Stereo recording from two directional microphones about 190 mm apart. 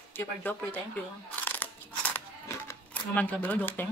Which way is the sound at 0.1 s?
10° left (ahead or behind).